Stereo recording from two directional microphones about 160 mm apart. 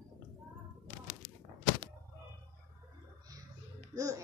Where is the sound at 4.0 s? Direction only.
20° right (ahead or behind).